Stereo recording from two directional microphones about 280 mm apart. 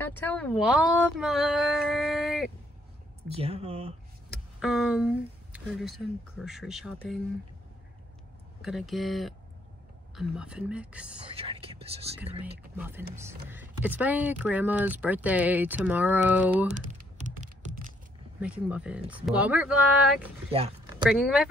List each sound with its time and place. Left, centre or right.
0.0 s speech: centre
3.3 s speech: right
4.6 s speech: centre
8.6 s speech: centre
11.3 s speech: centre
12.7 s speech: centre
17.3 s typing: right
18.4 s speech: centre
20.5 s a sound: right
21.0 s speech: centre